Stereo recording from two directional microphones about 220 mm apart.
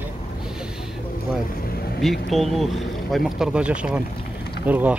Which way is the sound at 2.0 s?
Centre (ahead or behind).